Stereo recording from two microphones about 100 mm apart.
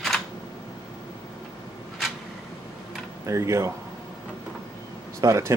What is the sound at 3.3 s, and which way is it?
Speech, 30° right (ahead or behind).